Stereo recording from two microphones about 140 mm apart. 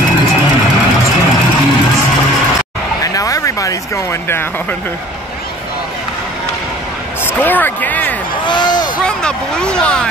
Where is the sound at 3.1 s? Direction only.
25° left (ahead or behind).